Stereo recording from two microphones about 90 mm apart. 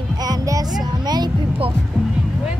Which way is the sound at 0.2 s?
45° right (ahead or behind).